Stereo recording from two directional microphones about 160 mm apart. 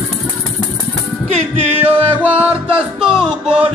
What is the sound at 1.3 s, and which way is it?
Music, 40° right (ahead or behind).